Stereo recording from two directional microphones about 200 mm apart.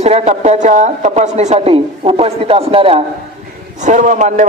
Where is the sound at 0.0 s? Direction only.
35° right (ahead or behind).